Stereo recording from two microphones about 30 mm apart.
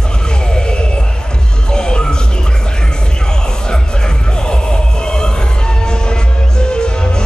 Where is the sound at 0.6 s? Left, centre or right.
Left.